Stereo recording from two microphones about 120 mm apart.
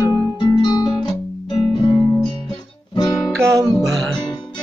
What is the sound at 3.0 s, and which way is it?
Music, 35° left (ahead or behind).